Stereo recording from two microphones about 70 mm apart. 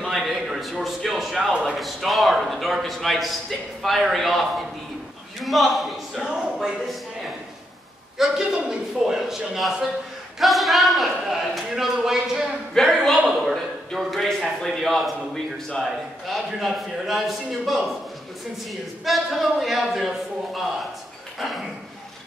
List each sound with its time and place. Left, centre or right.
0.0 s a sound: centre
1.8 s a man's voice: centre
8.2 s a man's voice: centre
12.7 s a man's voice: centre
19.0 s a man's voice: centre
21.4 s a man's voice: centre